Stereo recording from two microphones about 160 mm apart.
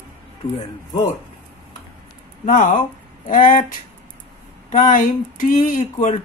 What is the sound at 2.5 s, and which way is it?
Speech, 50° left (ahead or behind).